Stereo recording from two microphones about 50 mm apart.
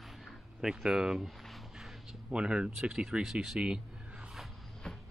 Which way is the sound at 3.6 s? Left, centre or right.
Right.